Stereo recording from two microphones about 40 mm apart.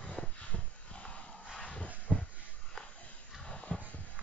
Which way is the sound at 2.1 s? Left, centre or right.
Centre.